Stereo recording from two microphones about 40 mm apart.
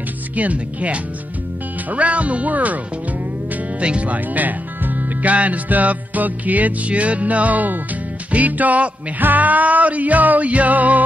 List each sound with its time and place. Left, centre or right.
0.4 s speech: right
3.8 s speech: right